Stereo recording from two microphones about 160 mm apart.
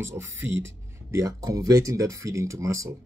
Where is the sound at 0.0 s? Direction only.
15° right (ahead or behind).